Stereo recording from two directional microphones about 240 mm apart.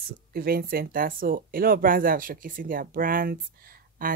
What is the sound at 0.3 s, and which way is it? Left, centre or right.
Speech, right.